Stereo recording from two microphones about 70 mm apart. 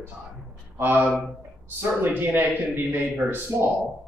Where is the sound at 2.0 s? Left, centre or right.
Right.